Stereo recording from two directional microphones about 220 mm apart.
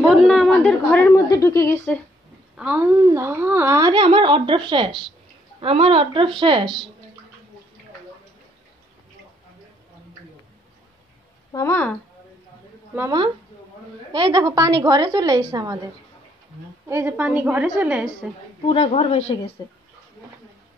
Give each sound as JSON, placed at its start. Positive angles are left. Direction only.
{"t": 0.0, "sound": "a sound", "side_deg": 0}
{"t": 2.5, "sound": "a woman's voice", "side_deg": -5}
{"t": 11.5, "sound": "speech", "side_deg": 10}
{"t": 12.9, "sound": "a woman's voice", "side_deg": -10}
{"t": 18.7, "sound": "speech", "side_deg": 25}